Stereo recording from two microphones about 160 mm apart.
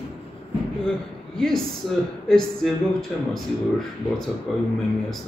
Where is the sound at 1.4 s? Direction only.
5° left (ahead or behind).